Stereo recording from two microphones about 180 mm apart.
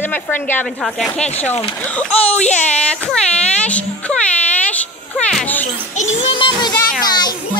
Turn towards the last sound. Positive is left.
turn(degrees=25)  # may be behind; listen again after turning